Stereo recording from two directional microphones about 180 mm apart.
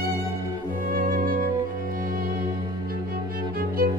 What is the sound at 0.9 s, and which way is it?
Music, 50° right (ahead or behind).